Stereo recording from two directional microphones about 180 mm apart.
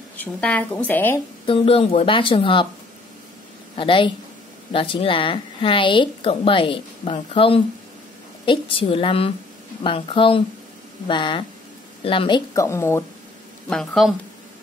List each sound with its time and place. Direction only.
0.2 s a woman's voice: 5° left (ahead or behind)
1.4 s a woman's voice: 30° left (ahead or behind)
3.7 s a woman's voice: 30° left (ahead or behind)
13.7 s speech: centre (ahead or behind)